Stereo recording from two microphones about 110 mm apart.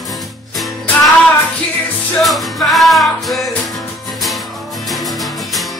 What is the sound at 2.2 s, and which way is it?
Music, centre (ahead or behind).